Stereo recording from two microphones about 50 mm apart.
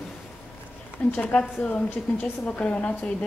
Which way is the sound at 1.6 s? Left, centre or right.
Left.